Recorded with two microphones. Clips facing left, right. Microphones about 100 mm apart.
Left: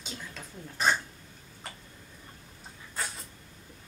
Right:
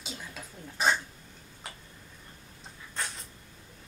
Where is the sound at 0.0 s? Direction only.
5° right (ahead or behind).